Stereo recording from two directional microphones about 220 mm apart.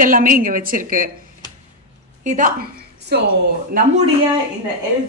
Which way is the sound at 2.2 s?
35° right (ahead or behind).